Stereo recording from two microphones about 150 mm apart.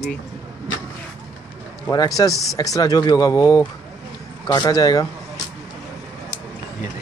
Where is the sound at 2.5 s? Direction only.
25° left (ahead or behind).